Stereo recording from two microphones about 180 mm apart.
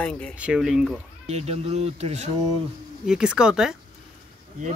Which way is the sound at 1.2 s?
35° right (ahead or behind).